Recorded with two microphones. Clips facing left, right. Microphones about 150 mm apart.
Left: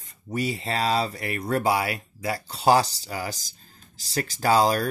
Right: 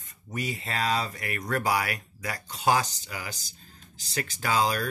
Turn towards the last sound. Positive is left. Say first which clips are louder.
# left 6 dB
turn(degrees=40)  # may be behind; listen again after turning